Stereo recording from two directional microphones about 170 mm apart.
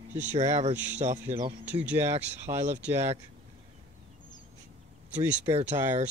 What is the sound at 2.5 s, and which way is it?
Speech, 25° right (ahead or behind).